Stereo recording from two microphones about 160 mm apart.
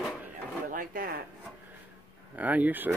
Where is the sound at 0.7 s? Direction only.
60° right (ahead or behind).